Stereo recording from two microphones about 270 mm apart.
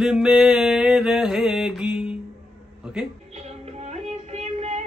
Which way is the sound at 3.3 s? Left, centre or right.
Right.